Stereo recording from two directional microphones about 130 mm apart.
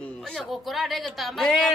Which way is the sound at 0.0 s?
5° left (ahead or behind).